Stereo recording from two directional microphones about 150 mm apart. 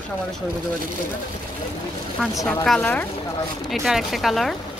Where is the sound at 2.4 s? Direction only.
5° left (ahead or behind).